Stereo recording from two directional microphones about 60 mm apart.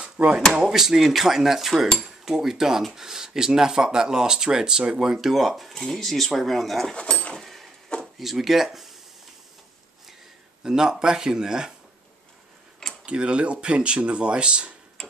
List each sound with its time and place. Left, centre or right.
0.0 s drawer open or close: centre
0.6 s speech: centre
2.0 s cutlery: centre
2.8 s speech: centre
7.0 s a sound: centre
8.2 s speech: centre
10.6 s speech: centre
13.0 s speech: centre
15.0 s tick-tock: centre